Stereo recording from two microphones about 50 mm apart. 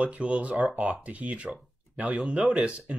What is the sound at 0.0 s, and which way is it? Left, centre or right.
Speech, right.